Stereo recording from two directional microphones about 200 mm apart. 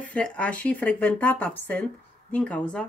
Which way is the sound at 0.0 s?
5° left (ahead or behind).